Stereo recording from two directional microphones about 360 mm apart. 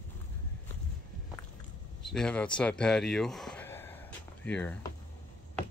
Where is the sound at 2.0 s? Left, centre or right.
Centre.